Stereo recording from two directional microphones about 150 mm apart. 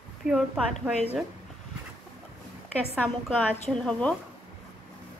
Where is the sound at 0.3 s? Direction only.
5° right (ahead or behind).